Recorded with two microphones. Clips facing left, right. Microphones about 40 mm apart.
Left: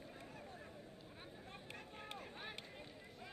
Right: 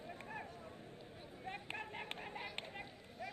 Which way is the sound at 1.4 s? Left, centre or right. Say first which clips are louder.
Right 12 dB; right.